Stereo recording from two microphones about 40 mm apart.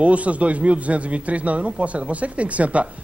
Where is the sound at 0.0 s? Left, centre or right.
Right.